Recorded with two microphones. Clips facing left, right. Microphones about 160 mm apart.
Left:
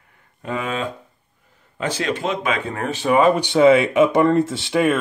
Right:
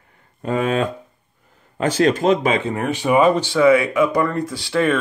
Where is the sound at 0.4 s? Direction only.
45° right (ahead or behind).